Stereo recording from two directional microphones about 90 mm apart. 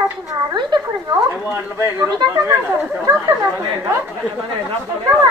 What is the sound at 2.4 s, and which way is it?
Speech, 25° right (ahead or behind).